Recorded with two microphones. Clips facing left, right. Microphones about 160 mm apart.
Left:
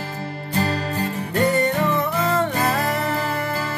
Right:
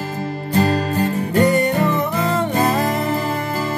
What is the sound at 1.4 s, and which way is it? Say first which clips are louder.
Music: right 1 dB; 15° right (ahead or behind).